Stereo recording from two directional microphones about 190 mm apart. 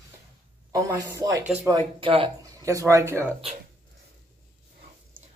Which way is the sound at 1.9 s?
30° right (ahead or behind).